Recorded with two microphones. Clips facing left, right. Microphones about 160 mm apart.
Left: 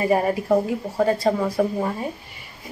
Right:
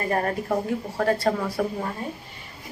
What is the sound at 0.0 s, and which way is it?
A woman's voice, 10° left (ahead or behind).